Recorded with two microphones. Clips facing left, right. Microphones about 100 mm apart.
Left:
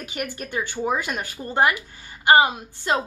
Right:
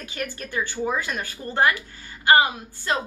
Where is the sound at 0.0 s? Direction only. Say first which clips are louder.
Left 1 dB; 15° left (ahead or behind).